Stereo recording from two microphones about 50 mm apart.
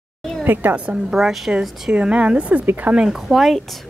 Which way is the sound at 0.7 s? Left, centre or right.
Right.